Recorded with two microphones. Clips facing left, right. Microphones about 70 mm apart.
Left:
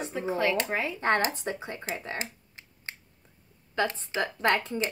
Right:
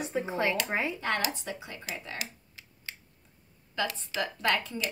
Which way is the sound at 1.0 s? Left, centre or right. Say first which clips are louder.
Left 5 dB; left.